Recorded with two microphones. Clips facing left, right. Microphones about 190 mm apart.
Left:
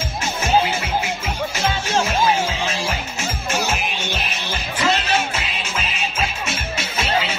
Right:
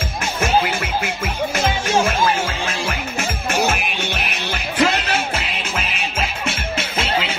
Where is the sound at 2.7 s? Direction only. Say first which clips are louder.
Even; 55° right (ahead or behind).